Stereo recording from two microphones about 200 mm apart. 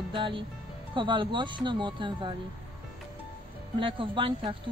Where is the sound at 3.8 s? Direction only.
25° right (ahead or behind).